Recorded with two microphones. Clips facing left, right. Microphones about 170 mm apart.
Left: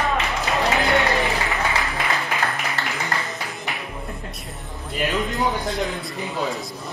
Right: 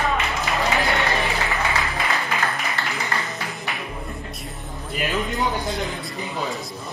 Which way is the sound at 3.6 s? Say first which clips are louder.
Even; centre (ahead or behind).